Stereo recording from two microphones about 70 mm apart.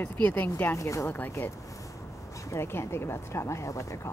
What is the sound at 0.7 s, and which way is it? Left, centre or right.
Speech, left.